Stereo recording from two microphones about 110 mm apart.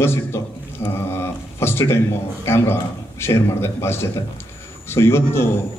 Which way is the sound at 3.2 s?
25° left (ahead or behind).